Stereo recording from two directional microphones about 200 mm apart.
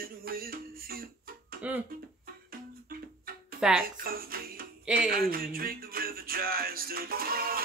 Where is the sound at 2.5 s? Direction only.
45° right (ahead or behind).